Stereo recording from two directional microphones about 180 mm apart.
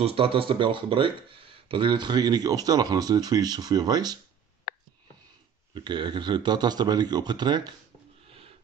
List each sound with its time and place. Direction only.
0.0 s speech: 30° right (ahead or behind)
4.7 s a sound: 60° left (ahead or behind)
5.9 s speech: 25° right (ahead or behind)